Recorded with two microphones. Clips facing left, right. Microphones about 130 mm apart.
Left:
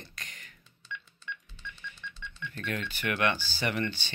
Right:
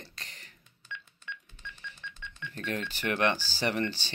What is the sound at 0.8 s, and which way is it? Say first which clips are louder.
Music: left 1 dB; 50° right (ahead or behind).